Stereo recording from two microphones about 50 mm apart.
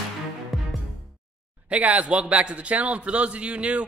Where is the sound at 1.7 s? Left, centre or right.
Right.